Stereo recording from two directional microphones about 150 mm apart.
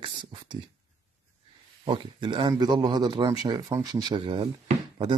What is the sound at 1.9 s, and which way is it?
Speech, 35° right (ahead or behind).